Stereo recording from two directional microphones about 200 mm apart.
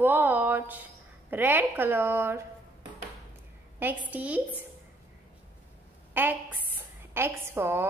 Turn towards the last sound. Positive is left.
turn(degrees=-10)  # may be behind; listen again after turning